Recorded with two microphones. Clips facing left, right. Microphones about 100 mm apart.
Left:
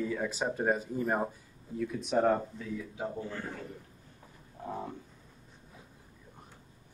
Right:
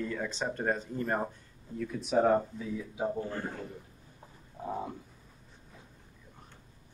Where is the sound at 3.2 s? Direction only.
40° right (ahead or behind).